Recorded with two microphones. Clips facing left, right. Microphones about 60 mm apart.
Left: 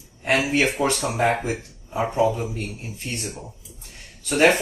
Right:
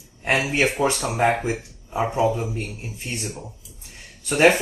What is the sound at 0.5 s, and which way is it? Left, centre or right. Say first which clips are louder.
Speech: even; centre.